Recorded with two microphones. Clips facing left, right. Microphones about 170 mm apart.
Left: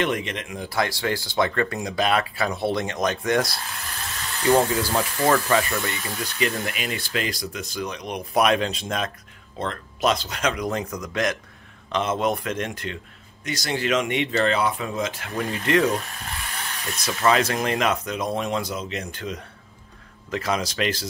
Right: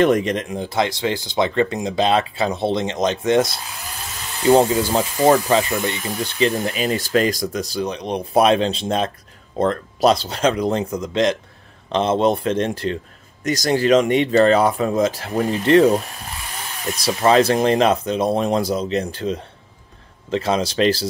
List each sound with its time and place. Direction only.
0.0 s a man's voice: 40° right (ahead or behind)
0.6 s a man's voice: 20° right (ahead or behind)
17.2 s a man's voice: 30° right (ahead or behind)